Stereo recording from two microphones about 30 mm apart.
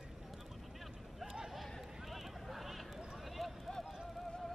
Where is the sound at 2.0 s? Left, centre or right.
Centre.